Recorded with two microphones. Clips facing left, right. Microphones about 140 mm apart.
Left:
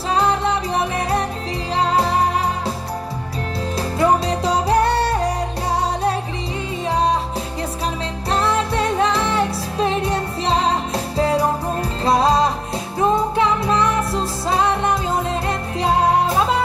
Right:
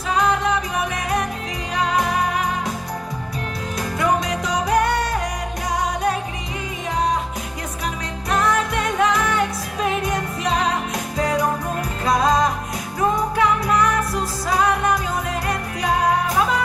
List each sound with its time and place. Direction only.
0.1 s music: 30° left (ahead or behind)
4.0 s music: 30° left (ahead or behind)
8.3 s music: 30° left (ahead or behind)